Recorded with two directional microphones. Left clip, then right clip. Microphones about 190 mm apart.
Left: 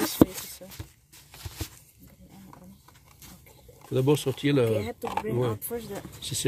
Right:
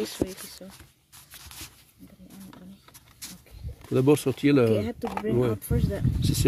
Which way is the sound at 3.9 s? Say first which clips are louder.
Right 3 dB; 50° right (ahead or behind).